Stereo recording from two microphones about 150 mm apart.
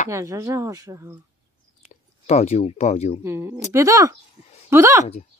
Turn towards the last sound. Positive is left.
turn(degrees=-20)  # may be behind; listen again after turning